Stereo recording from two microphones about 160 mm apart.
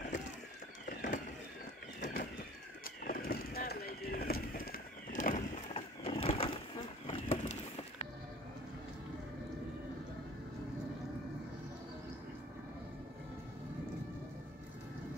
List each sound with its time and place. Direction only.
0.8 s a sound: 55° left (ahead or behind)
2.8 s vehicle: 65° left (ahead or behind)
5.7 s vehicle: 40° left (ahead or behind)